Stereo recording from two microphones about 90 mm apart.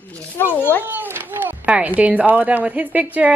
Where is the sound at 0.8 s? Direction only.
20° right (ahead or behind).